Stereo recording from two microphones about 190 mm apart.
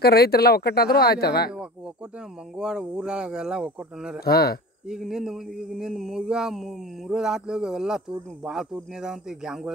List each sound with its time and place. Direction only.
0.0 s speech: 55° left (ahead or behind)
2.5 s speech: 5° right (ahead or behind)
4.2 s speech: 55° left (ahead or behind)
4.8 s speech: centre (ahead or behind)